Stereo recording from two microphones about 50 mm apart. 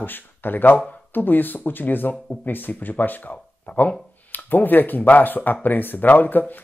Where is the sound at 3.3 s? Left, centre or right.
Left.